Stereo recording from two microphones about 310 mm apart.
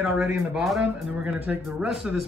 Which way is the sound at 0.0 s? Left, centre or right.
Centre.